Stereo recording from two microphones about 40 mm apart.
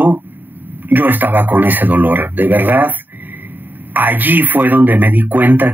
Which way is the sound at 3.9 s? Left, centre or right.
Right.